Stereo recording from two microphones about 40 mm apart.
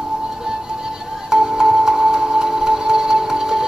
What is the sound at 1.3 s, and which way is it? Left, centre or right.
Music, centre.